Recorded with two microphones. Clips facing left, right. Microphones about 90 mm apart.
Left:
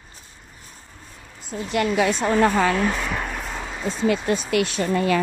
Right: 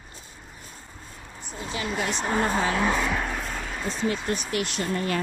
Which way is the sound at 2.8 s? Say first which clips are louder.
Even; 5° right (ahead or behind).